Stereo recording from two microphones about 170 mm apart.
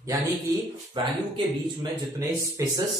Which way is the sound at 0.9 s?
25° right (ahead or behind).